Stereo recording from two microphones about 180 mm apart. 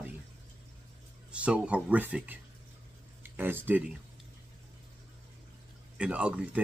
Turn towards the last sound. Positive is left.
turn(degrees=-5)  # may be behind; listen again after turning